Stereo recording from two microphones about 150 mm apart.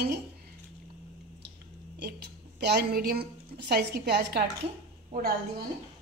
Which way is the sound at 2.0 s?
90° right.